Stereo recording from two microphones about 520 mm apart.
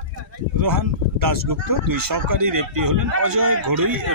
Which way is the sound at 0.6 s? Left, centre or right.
Right.